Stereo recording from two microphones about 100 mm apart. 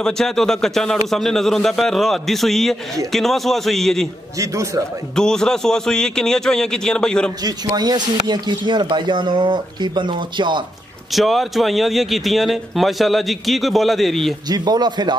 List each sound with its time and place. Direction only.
0.0 s speech: 5° left (ahead or behind)
4.4 s a man's voice: 35° right (ahead or behind)
5.1 s speech: 5° left (ahead or behind)
7.4 s speech: 40° right (ahead or behind)
11.1 s speech: centre (ahead or behind)
14.5 s speech: 45° right (ahead or behind)